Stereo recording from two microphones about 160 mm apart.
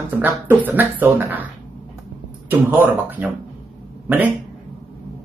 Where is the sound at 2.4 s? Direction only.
15° right (ahead or behind).